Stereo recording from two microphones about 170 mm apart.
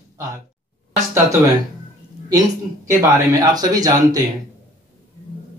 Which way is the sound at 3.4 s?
20° right (ahead or behind).